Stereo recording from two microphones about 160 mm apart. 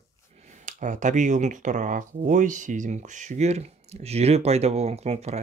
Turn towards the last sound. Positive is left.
turn(degrees=-40)  # may be behind; listen again after turning